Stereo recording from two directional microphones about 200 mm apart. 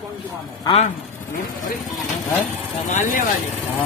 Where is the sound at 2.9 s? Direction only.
40° left (ahead or behind).